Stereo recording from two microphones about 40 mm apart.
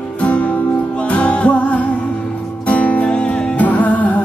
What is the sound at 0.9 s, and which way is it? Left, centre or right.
Music, left.